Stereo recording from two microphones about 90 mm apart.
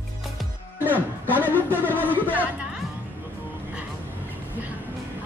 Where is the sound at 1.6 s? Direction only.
20° right (ahead or behind).